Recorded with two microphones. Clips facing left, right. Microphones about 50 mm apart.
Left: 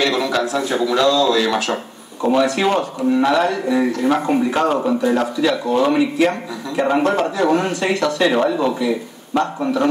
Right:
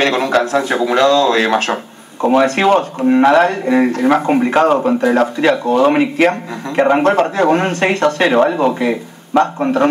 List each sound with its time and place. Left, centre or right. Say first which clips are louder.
0.0 s a man's voice: right 4 dB; right